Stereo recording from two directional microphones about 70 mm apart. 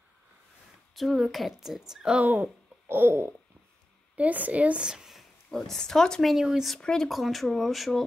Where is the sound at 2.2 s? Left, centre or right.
Right.